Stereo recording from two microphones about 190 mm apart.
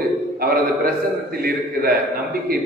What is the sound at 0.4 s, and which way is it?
A man's voice, 50° right (ahead or behind).